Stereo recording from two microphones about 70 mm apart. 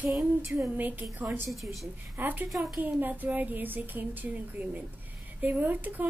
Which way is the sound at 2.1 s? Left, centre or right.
Right.